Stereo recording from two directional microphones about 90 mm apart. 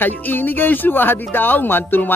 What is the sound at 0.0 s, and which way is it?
A woman's voice, 20° left (ahead or behind).